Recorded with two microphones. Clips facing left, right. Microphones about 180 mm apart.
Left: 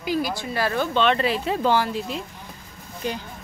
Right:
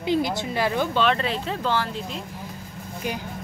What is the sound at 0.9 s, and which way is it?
Speech, centre (ahead or behind).